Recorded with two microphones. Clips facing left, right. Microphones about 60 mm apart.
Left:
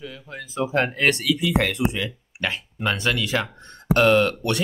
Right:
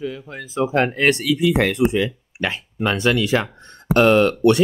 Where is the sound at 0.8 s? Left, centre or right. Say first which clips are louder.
Right 3 dB; right.